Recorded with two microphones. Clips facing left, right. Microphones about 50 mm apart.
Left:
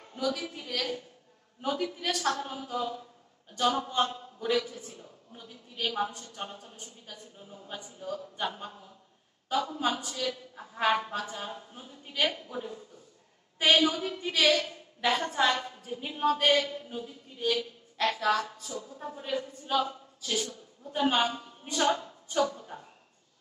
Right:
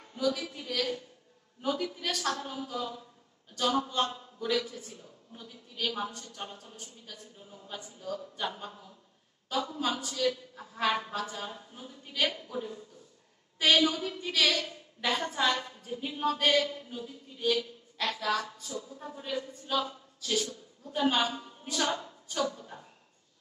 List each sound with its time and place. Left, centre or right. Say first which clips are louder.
0.1 s a man's voice: right 1 dB; centre
2.4 s a man's voice: left 2 dB; centre
9.8 s a man's voice: right 1 dB; centre